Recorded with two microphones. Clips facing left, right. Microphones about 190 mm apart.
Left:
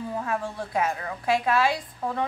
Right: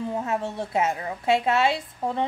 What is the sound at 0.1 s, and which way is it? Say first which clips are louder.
A woman's voice: right 2 dB; 25° right (ahead or behind).